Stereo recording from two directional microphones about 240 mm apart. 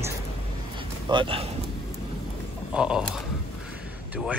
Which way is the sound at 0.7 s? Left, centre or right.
Right.